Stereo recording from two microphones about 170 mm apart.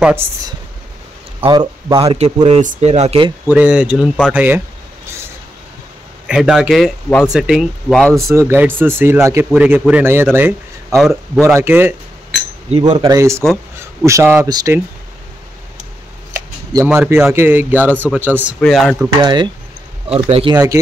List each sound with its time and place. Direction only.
0.0 s speech: 15° right (ahead or behind)
1.4 s a man's voice: 25° right (ahead or behind)
2.4 s speech: 45° right (ahead or behind)
3.4 s speech: 5° right (ahead or behind)
6.2 s speech: 5° right (ahead or behind)
8.4 s speech: 15° right (ahead or behind)
11.0 s speech: centre (ahead or behind)
11.4 s speech: 15° right (ahead or behind)
12.7 s speech: 30° right (ahead or behind)
16.3 s speech: 10° right (ahead or behind)
18.6 s speech: centre (ahead or behind)
19.2 s speech: 25° right (ahead or behind)
20.5 s speech: 20° right (ahead or behind)